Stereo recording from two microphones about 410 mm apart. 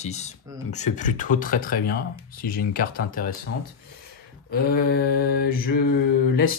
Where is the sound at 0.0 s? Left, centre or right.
Centre.